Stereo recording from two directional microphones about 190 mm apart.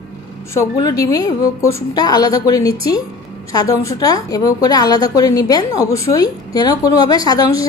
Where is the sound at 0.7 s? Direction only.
20° left (ahead or behind).